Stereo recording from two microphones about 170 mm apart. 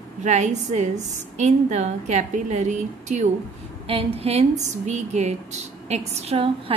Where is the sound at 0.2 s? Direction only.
45° right (ahead or behind).